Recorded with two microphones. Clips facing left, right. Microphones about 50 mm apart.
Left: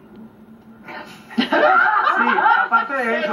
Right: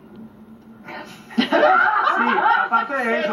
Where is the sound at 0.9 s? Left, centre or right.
Centre.